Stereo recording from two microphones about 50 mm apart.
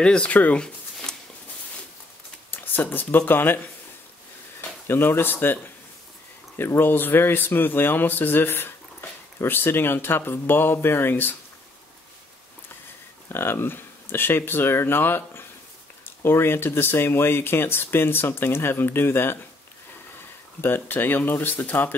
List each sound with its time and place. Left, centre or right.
0.0 s speech: centre
0.3 s speech: left
2.5 s speech: left
4.6 s speech: left
6.8 s speech: left
13.3 s speech: left
20.6 s speech: left